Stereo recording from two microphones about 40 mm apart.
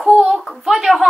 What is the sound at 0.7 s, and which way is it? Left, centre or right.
Speech, centre.